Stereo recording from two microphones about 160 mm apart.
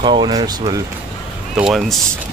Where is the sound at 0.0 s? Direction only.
30° right (ahead or behind).